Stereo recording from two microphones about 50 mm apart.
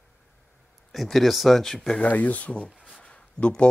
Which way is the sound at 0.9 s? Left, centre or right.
Centre.